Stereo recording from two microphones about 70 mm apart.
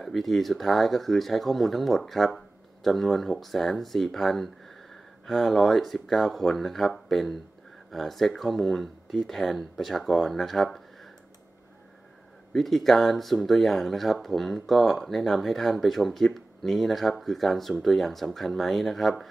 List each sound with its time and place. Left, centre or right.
0.0 s speech: centre
12.5 s speech: centre